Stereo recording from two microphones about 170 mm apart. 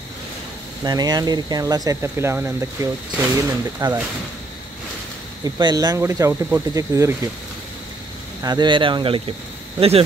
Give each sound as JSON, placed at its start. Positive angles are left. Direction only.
{"t": 0.8, "sound": "speech", "side_deg": -25}
{"t": 5.4, "sound": "speech", "side_deg": -25}
{"t": 8.4, "sound": "speech", "side_deg": -25}